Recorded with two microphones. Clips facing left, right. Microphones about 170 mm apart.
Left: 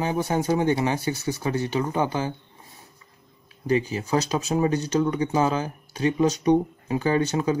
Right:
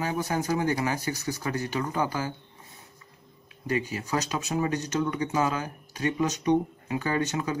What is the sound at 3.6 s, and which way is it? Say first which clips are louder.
Speech: left 6 dB; 25° left (ahead or behind).